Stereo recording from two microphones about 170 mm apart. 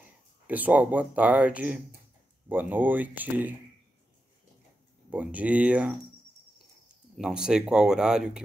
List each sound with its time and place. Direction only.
0.5 s speech: 10° right (ahead or behind)
5.1 s speech: 10° right (ahead or behind)
7.2 s speech: 5° right (ahead or behind)